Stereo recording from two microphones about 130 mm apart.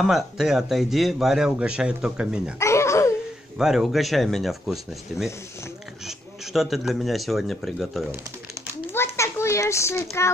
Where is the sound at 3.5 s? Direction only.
5° right (ahead or behind).